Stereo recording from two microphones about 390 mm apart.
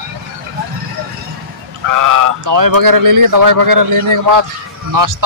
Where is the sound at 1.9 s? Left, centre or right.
Right.